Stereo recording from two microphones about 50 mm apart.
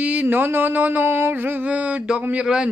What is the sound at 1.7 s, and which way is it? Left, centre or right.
A man's voice, right.